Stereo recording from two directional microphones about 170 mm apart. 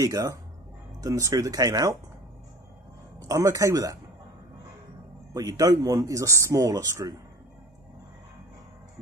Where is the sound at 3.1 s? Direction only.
20° right (ahead or behind).